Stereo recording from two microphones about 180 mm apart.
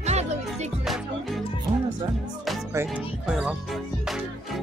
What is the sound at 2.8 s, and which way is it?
Music, 15° right (ahead or behind).